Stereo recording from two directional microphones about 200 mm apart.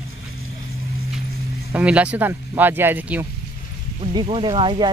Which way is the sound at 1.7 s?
5° right (ahead or behind).